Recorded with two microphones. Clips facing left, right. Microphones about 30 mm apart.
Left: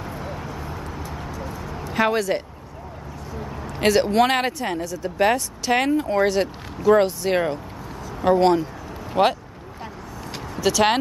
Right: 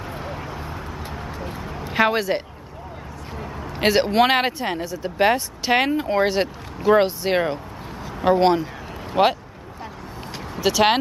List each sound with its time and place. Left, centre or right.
0.1 s vehicle: centre
1.6 s a sound: centre
1.9 s speech: right
10.5 s speech: centre